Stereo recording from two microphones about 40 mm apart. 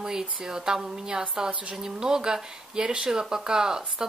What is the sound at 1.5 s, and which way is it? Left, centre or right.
Speech, right.